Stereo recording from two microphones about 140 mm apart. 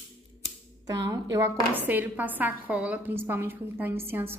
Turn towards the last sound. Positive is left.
turn(degrees=-15)  # may be behind; listen again after turning